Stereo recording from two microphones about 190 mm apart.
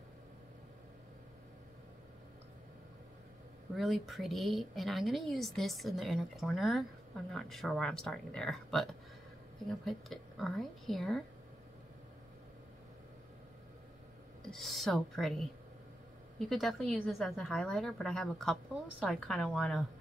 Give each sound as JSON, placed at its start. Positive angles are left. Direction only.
{"t": 3.7, "sound": "a woman's voice", "side_deg": 0}
{"t": 14.4, "sound": "a woman's voice", "side_deg": 0}